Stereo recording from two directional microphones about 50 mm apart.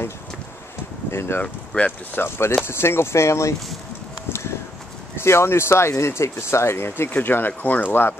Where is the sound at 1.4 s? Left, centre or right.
Left.